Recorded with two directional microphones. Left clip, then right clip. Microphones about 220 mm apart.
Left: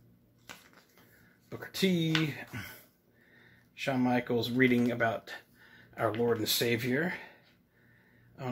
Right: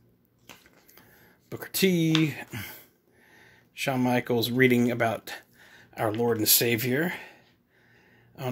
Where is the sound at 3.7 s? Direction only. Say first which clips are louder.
Right 4 dB; 50° right (ahead or behind).